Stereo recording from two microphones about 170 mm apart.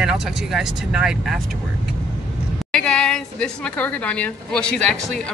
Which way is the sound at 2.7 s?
5° left (ahead or behind).